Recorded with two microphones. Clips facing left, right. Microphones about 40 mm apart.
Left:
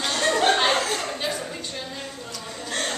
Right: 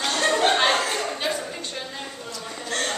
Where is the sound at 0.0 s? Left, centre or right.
Centre.